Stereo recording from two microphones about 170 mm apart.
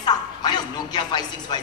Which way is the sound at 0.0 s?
25° left (ahead or behind).